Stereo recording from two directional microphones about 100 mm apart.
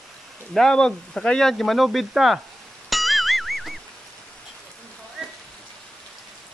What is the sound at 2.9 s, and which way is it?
Music, centre (ahead or behind).